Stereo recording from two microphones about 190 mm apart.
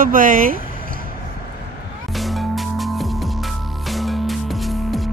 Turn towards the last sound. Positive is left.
turn(degrees=0)  # may be behind; listen again after turning